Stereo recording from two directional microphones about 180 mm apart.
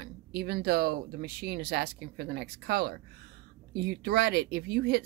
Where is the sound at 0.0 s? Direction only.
60° right (ahead or behind).